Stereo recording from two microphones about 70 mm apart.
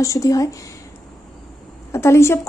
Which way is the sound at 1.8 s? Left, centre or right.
Left.